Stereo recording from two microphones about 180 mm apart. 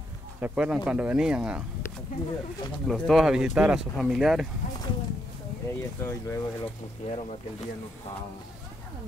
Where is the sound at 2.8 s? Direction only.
Centre (ahead or behind).